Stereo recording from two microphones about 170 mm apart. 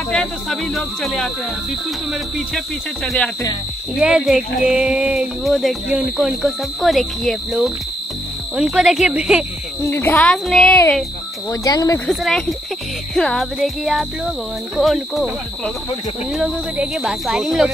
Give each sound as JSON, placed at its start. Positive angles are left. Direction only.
{"t": 0.1, "sound": "speech", "side_deg": 5}
{"t": 2.5, "sound": "speech", "side_deg": 5}
{"t": 9.8, "sound": "speech", "side_deg": 15}
{"t": 11.6, "sound": "speech", "side_deg": 20}
{"t": 12.1, "sound": "speech", "side_deg": 0}